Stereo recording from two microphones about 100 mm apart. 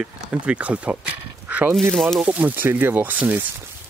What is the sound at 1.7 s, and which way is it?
Speech, centre (ahead or behind).